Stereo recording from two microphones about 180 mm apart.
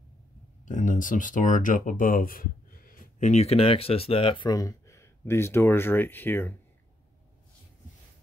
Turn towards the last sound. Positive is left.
turn(degrees=10)  # may be behind; listen again after turning